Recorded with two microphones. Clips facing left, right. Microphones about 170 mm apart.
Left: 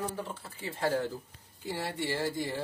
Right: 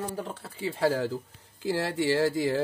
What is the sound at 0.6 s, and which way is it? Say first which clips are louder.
Speech: right 5 dB; 90° right.